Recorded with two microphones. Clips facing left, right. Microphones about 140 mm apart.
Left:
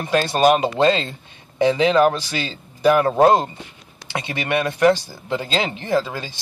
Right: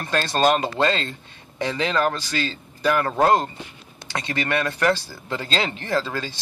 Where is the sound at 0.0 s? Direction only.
15° left (ahead or behind).